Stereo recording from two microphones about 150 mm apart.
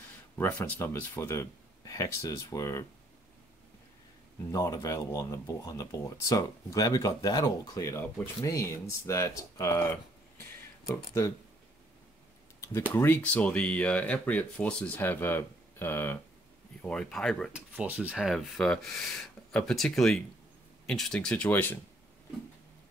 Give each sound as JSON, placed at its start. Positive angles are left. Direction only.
{"t": 0.4, "sound": "speech", "side_deg": 15}
{"t": 4.5, "sound": "speech", "side_deg": 20}
{"t": 12.5, "sound": "a sound", "side_deg": 15}
{"t": 12.9, "sound": "speech", "side_deg": 15}
{"t": 17.5, "sound": "speech", "side_deg": -10}